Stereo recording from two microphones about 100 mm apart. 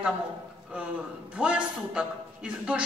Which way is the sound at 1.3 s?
10° right (ahead or behind).